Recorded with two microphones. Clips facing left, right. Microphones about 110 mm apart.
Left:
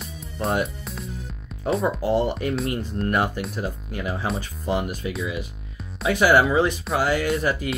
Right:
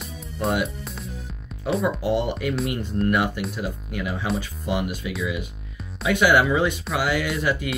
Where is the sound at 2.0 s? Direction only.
40° left (ahead or behind).